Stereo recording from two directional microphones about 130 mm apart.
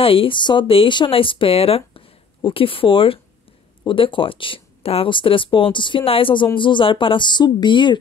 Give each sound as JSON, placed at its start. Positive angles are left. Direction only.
{"t": 0.0, "sound": "speech", "side_deg": 45}